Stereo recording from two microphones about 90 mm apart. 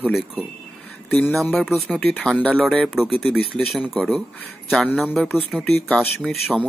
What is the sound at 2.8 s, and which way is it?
Speech, 5° right (ahead or behind).